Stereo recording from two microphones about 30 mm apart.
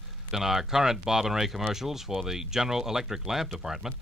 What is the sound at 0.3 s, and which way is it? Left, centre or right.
Speech, centre.